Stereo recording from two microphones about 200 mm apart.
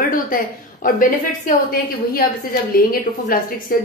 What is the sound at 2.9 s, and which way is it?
Speech, 45° left (ahead or behind).